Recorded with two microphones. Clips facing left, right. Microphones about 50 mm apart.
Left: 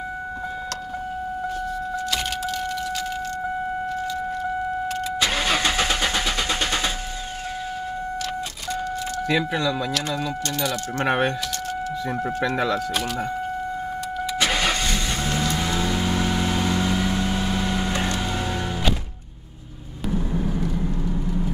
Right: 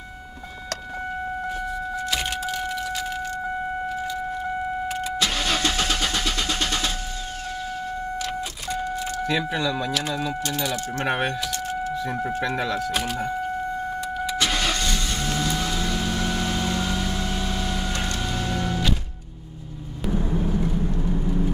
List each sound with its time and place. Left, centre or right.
2.0 s car: centre
4.8 s car: centre
5.2 s vehicle: centre
8.2 s vehicle: centre
9.2 s speech: centre
11.1 s speech: centre
12.9 s speech: centre
14.4 s vehicle: left